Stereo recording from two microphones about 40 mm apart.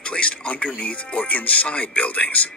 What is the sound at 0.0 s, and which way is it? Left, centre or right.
A man's voice, left.